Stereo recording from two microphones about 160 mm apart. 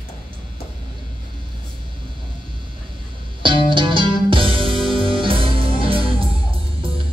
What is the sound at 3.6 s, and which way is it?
Music, 30° right (ahead or behind).